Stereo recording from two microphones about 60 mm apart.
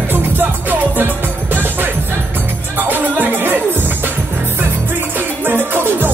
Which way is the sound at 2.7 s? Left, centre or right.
Right.